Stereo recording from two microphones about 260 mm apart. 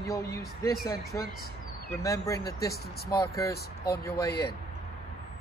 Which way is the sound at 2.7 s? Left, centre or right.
Left.